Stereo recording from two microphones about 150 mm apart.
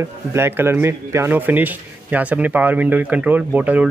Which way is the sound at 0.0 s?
15° right (ahead or behind).